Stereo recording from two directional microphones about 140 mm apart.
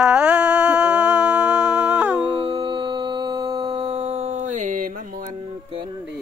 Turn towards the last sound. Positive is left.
turn(degrees=-65)  # may be behind; listen again after turning